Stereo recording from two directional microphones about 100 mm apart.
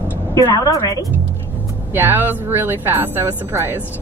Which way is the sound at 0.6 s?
35° left (ahead or behind).